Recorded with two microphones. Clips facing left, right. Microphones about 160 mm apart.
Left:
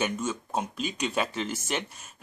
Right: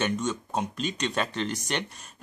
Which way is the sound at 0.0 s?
5° left (ahead or behind).